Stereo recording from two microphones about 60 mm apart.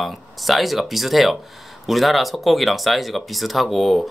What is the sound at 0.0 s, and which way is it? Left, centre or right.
Speech, centre.